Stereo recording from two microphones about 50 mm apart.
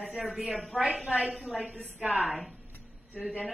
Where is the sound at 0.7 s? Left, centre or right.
Centre.